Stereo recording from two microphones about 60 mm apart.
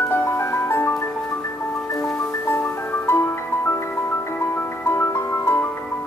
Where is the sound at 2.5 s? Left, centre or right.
Left.